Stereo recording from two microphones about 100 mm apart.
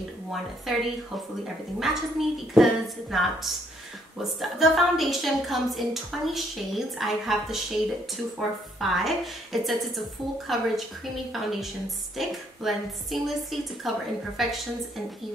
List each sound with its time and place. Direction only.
0.3 s a woman's voice: centre (ahead or behind)